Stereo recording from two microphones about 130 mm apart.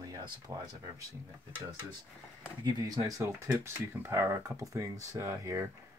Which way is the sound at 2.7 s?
30° right (ahead or behind).